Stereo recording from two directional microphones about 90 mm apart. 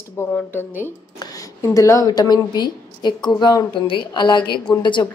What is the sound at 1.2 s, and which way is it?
A woman's voice, 40° left (ahead or behind).